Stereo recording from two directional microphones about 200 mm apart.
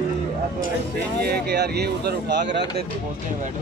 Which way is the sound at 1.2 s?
55° right (ahead or behind).